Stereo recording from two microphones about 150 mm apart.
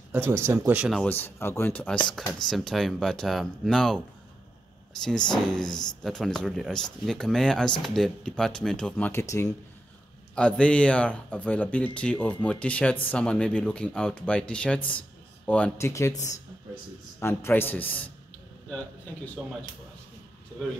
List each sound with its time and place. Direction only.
0.1 s speech: 15° right (ahead or behind)
1.0 s speech: 15° left (ahead or behind)
5.0 s speech: 5° left (ahead or behind)
9.2 s speech: 20° left (ahead or behind)
10.3 s speech: 5° left (ahead or behind)
15.9 s speech: 20° left (ahead or behind)
17.2 s speech: 15° left (ahead or behind)